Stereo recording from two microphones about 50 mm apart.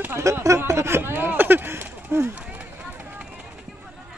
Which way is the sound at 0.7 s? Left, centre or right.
Right.